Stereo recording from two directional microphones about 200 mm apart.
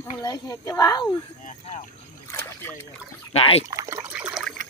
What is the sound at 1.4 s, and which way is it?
Vehicle, 35° left (ahead or behind).